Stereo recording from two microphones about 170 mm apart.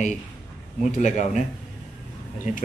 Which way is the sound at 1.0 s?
45° left (ahead or behind).